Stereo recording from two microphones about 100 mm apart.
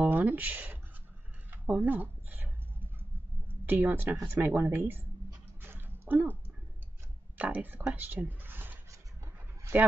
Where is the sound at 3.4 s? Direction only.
20° right (ahead or behind).